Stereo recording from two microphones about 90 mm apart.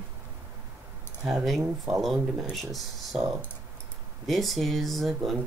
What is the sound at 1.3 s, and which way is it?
Speech, centre (ahead or behind).